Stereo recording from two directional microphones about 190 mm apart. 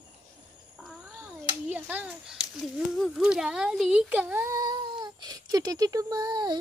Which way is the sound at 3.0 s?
Centre (ahead or behind).